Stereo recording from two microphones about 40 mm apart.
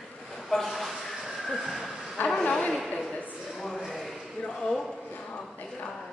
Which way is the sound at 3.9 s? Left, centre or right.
Centre.